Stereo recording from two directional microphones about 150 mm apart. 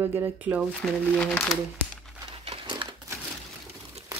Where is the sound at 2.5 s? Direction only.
30° right (ahead or behind).